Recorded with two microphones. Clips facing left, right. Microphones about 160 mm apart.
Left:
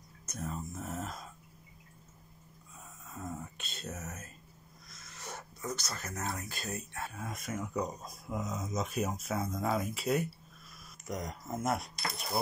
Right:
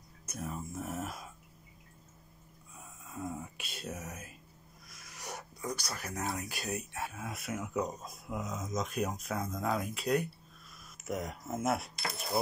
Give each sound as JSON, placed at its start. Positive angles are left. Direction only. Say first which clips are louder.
{"t": 0.3, "sound": "speech", "louder": "even", "side_deg": -10}
{"t": 3.1, "sound": "a sound", "louder": "right 2 dB", "side_deg": -10}
{"t": 7.1, "sound": "speech", "louder": "even", "side_deg": -5}